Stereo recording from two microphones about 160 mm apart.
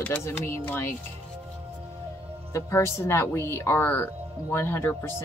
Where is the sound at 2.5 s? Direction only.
15° left (ahead or behind).